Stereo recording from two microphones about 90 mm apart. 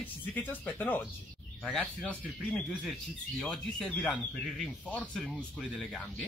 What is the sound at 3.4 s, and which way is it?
Speech, 10° left (ahead or behind).